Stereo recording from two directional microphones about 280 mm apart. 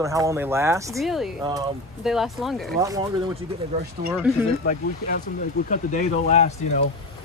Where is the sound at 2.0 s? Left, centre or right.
Centre.